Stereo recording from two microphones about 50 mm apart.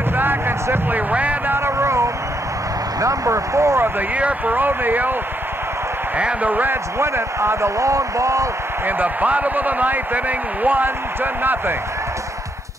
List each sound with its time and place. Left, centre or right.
0.1 s a sound: right
0.8 s a sound: right
1.6 s vehicle: right
3.0 s speech: right
4.1 s speech: right
6.1 s a man's voice: right
6.5 s speech: right
7.0 s speech: right
8.8 s speech: right